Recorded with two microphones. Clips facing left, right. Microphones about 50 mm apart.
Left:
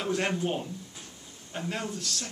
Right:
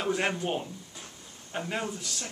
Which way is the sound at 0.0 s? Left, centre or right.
Centre.